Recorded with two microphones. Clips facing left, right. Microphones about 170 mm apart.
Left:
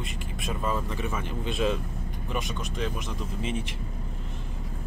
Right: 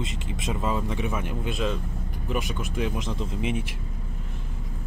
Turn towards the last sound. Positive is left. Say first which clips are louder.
# right 3 dB
turn(degrees=-10)  # may be behind; listen again after turning